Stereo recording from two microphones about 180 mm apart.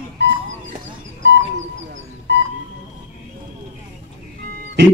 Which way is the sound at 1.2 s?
80° right.